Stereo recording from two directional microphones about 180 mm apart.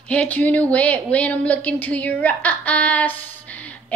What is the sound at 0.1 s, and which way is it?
Speech, 10° left (ahead or behind).